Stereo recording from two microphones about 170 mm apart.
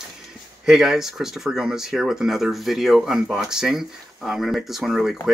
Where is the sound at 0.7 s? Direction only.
Centre (ahead or behind).